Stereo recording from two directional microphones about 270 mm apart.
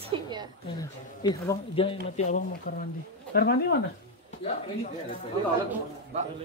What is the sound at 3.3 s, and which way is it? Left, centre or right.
Speech, left.